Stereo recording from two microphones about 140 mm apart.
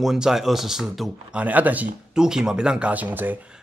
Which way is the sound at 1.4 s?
10° right (ahead or behind).